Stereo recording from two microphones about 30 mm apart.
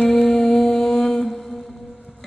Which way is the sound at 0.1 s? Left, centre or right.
Centre.